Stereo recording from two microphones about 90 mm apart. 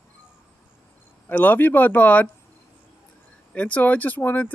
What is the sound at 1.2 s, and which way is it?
Speech, 20° left (ahead or behind).